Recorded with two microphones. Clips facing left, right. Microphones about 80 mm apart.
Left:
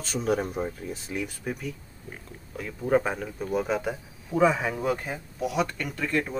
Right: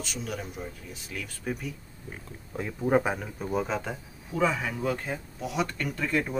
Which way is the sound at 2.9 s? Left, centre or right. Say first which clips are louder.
Left 1 dB; centre.